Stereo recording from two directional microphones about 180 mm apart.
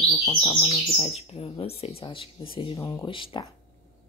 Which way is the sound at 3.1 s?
30° left (ahead or behind).